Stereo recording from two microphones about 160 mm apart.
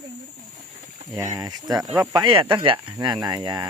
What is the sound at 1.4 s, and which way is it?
Speech, 25° right (ahead or behind).